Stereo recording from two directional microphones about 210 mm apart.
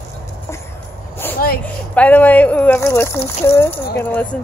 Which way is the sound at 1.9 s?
5° left (ahead or behind).